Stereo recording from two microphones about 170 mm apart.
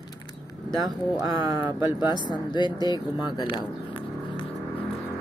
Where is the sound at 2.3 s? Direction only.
25° left (ahead or behind).